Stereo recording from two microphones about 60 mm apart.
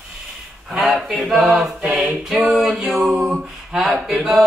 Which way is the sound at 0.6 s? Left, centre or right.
Centre.